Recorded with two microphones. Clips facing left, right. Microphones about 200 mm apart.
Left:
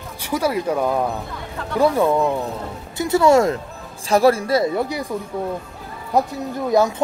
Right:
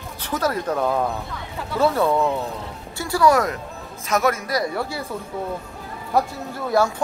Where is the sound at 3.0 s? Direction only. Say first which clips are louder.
Left 4 dB; 25° left (ahead or behind).